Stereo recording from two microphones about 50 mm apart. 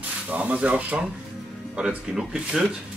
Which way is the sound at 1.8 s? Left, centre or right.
Centre.